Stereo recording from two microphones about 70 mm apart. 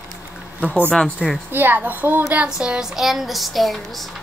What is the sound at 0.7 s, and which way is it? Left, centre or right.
A child's voice, right.